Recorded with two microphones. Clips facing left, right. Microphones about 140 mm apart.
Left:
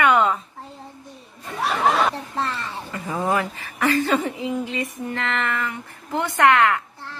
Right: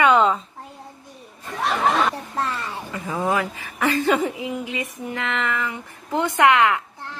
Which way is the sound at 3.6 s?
15° right (ahead or behind).